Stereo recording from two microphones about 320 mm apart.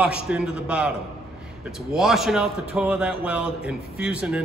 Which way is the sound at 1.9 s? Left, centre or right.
Centre.